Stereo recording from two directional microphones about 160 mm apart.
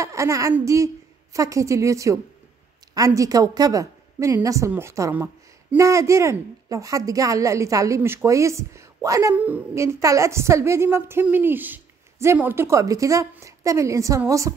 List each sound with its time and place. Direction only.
0.0 s a woman's voice: 20° right (ahead or behind)